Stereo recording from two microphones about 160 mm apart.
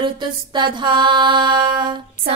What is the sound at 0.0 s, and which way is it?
Mantra, 30° right (ahead or behind).